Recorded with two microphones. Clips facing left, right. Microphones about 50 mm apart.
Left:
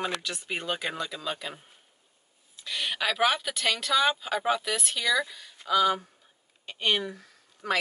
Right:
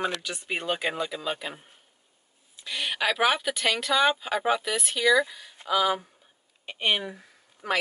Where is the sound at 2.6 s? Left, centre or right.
Centre.